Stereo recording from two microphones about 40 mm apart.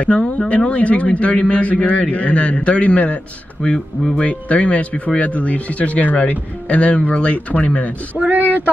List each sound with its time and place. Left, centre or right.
0.0 s a man's voice: left
4.2 s a man's voice: left
8.2 s a sound: right